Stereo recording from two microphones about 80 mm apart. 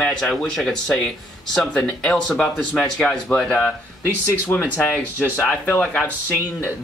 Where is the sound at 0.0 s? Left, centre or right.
Centre.